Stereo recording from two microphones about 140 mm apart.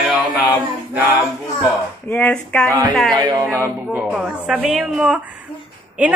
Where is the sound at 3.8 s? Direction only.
10° right (ahead or behind).